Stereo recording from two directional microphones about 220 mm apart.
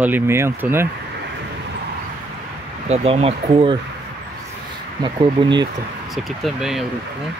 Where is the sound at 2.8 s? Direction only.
30° right (ahead or behind).